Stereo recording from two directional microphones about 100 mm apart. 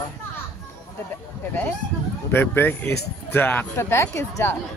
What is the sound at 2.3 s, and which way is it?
Speech, 20° left (ahead or behind).